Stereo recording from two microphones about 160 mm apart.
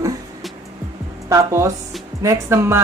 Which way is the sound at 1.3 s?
20° right (ahead or behind).